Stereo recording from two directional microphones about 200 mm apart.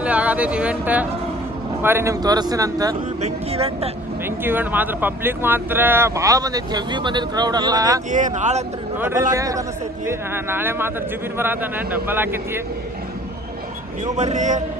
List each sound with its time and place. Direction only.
0.0 s speech: 5° right (ahead or behind)
3.2 s speech: 30° right (ahead or behind)
4.4 s speech: 10° right (ahead or behind)
8.1 s speech: 40° right (ahead or behind)
8.9 s speech: 10° right (ahead or behind)
14.1 s speech: 35° right (ahead or behind)